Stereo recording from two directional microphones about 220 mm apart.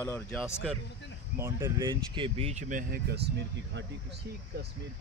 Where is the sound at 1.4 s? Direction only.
15° right (ahead or behind); by 3.8 s 50° right (ahead or behind).